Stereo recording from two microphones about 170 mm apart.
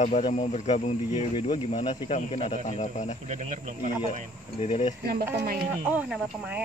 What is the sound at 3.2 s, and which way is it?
Speech, 45° right (ahead or behind).